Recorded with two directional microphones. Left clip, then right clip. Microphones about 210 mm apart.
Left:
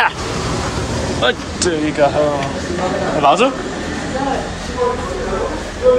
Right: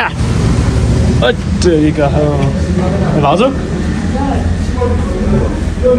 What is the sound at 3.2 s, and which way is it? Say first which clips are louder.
Speech: right 1 dB; 15° left (ahead or behind).